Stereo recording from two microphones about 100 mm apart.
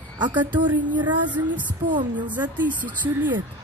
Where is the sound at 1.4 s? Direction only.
30° right (ahead or behind).